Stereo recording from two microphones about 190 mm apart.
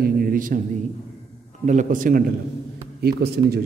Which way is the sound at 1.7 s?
45° right (ahead or behind).